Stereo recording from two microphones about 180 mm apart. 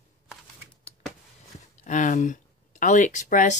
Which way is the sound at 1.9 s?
45° left (ahead or behind).